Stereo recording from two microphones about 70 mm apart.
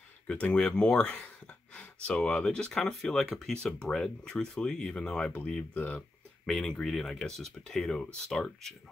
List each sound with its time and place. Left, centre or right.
0.3 s speech: centre
6.4 s speech: centre